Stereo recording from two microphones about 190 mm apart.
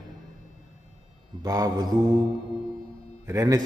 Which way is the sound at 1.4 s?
20° right (ahead or behind).